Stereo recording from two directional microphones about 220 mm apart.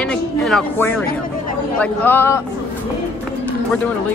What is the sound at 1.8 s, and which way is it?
Speech, 10° left (ahead or behind).